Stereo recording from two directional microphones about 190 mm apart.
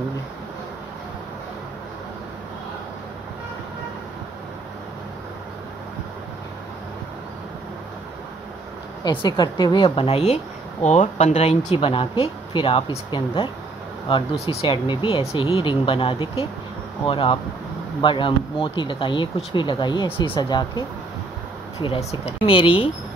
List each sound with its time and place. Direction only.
9.0 s speech: 25° left (ahead or behind)
21.8 s speech: 25° left (ahead or behind)